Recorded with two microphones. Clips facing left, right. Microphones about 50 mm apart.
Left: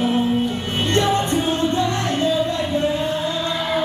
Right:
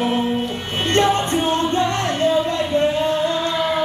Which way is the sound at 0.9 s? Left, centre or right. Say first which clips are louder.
Right 2 dB; right.